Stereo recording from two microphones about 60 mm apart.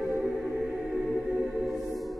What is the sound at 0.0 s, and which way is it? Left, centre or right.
Music, centre.